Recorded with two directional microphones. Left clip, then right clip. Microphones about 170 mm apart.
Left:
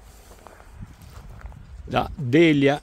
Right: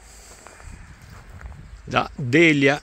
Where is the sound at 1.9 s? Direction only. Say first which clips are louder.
Right 1 dB; 15° left (ahead or behind).